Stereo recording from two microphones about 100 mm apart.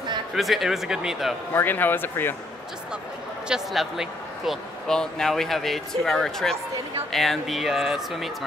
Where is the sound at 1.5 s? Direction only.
20° left (ahead or behind).